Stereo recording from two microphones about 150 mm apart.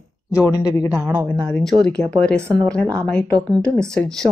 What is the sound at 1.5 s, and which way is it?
A woman's voice, 5° left (ahead or behind).